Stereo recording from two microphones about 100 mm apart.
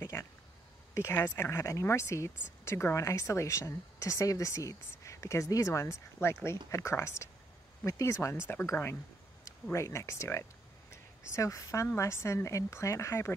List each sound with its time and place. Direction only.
0.0 s a woman's voice: 25° left (ahead or behind)